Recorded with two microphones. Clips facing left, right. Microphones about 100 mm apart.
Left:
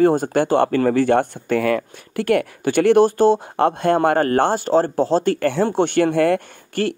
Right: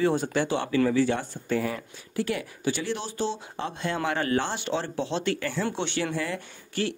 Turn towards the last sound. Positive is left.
turn(degrees=55)  # may be behind; listen again after turning